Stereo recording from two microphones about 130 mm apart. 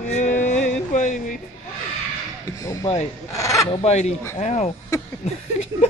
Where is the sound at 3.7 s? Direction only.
55° left (ahead or behind).